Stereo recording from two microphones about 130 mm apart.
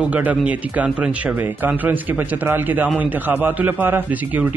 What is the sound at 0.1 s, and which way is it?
A man's voice, 10° right (ahead or behind).